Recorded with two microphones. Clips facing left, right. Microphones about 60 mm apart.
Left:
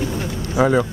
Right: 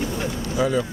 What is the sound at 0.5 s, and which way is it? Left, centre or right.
Speech, left.